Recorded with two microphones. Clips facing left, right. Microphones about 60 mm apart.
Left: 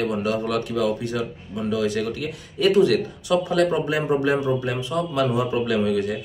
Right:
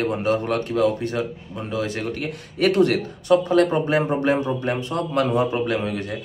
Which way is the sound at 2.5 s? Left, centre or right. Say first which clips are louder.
Left 1 dB; right.